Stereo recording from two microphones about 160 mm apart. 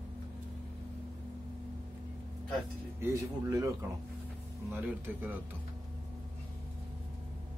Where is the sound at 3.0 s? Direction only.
20° right (ahead or behind).